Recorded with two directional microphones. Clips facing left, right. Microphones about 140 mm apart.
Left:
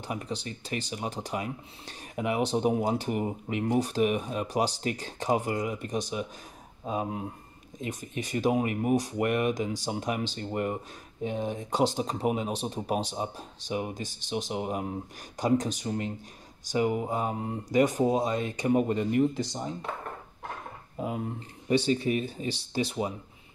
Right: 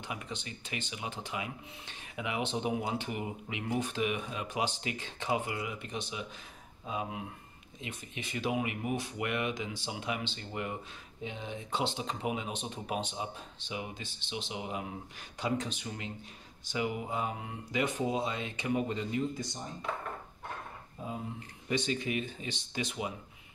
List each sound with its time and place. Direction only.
0.0 s speech: 35° left (ahead or behind); by 19.7 s 90° left
21.0 s speech: 75° left (ahead or behind)
21.6 s speech: 35° left (ahead or behind)